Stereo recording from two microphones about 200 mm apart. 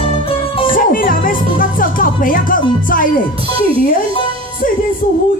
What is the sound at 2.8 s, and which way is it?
A woman's voice, 45° left (ahead or behind).